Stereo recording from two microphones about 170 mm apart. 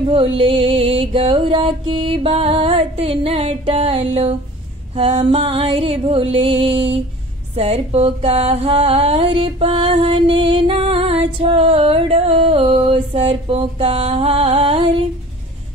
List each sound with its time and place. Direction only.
0.1 s music: 35° right (ahead or behind)